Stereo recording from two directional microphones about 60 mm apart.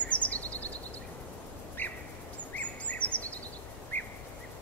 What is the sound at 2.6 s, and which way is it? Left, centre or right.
Bird vocalization, left.